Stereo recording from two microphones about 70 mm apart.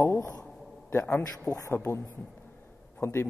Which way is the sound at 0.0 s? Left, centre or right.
Left.